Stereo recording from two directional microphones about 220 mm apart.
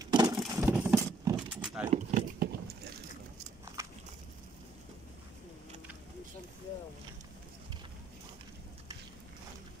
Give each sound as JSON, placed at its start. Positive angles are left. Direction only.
{"t": 0.0, "sound": "vehicle", "side_deg": -20}
{"t": 1.2, "sound": "keys jangling", "side_deg": -5}
{"t": 1.9, "sound": "a sound", "side_deg": -35}
{"t": 3.8, "sound": "walk", "side_deg": -10}